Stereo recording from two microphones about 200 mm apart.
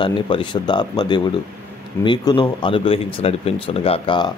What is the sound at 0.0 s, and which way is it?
Speech, 25° left (ahead or behind).